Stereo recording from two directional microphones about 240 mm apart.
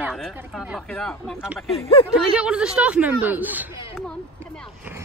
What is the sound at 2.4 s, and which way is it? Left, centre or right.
Speech, centre.